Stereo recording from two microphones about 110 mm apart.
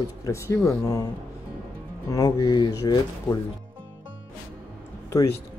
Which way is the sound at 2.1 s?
35° left (ahead or behind).